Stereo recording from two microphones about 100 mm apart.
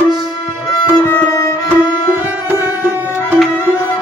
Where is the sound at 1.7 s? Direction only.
20° right (ahead or behind).